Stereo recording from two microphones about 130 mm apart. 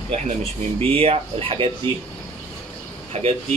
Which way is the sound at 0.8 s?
45° right (ahead or behind).